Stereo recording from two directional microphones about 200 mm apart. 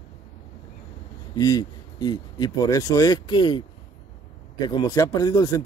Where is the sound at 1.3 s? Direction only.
20° left (ahead or behind).